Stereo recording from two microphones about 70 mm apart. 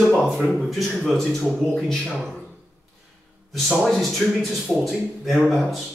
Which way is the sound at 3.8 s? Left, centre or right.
Centre.